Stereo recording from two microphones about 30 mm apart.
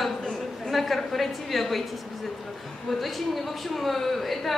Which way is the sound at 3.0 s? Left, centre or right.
Centre.